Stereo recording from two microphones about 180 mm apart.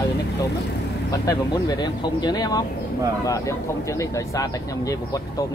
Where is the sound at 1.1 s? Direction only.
20° left (ahead or behind).